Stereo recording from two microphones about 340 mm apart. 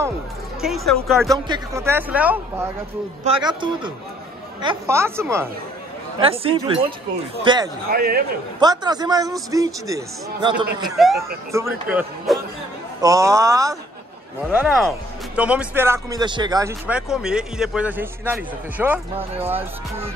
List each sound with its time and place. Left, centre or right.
0.6 s a man's voice: centre
7.9 s a man's voice: right
8.5 s a man's voice: centre
11.0 s a man's voice: centre